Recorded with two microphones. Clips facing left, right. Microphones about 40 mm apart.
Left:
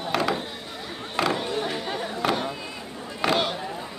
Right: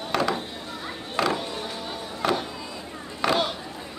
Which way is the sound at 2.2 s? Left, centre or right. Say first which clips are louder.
Right 1 dB; centre.